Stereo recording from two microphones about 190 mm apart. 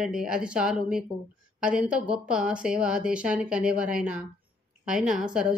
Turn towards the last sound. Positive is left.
turn(degrees=-5)  # may be behind; listen again after turning